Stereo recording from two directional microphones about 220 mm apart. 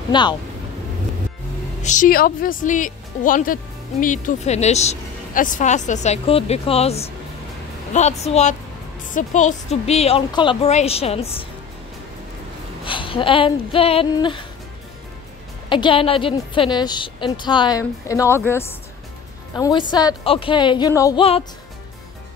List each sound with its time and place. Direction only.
0.1 s a woman's voice: 20° left (ahead or behind)
1.8 s a woman's voice: 35° left (ahead or behind)
12.8 s speech: 25° left (ahead or behind)
15.7 s a woman's voice: 25° left (ahead or behind)